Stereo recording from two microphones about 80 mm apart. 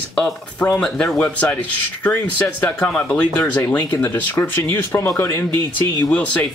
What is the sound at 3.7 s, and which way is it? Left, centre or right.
Speech, left.